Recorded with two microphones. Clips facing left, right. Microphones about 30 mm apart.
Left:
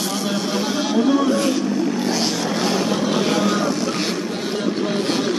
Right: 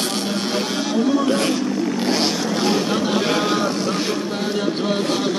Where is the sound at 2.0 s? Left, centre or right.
Right.